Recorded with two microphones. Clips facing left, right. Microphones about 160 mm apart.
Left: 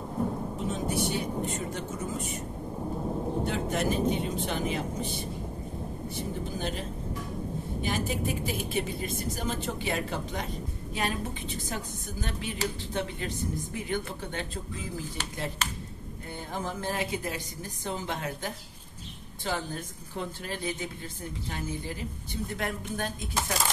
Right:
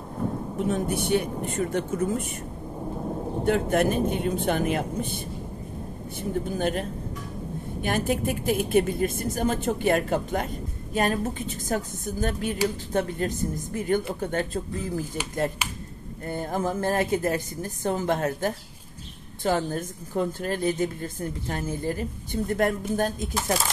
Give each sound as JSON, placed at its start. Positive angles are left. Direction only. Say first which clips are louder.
{"t": 0.7, "sound": "speech", "louder": "right 5 dB", "side_deg": -60}
{"t": 3.4, "sound": "a woman's voice", "louder": "right 10 dB", "side_deg": -55}
{"t": 16.3, "sound": "a woman's voice", "louder": "right 8 dB", "side_deg": -45}